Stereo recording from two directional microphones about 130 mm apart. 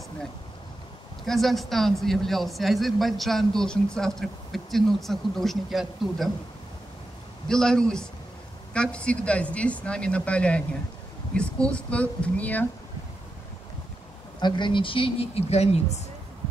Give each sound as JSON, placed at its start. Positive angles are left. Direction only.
{"t": 1.2, "sound": "a man's voice", "side_deg": 0}
{"t": 7.4, "sound": "a man's voice", "side_deg": 5}
{"t": 14.4, "sound": "speech", "side_deg": 35}